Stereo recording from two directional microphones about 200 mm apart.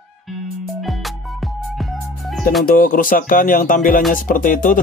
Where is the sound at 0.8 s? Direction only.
Centre (ahead or behind).